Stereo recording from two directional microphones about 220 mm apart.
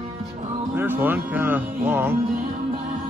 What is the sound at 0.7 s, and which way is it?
Speech, 10° right (ahead or behind).